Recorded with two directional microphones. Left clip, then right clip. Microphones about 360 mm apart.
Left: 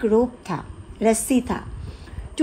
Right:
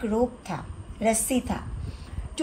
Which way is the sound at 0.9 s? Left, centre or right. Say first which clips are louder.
Left 5 dB; left.